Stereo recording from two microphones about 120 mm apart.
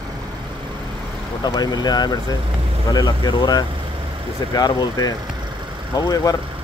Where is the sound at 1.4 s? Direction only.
35° left (ahead or behind).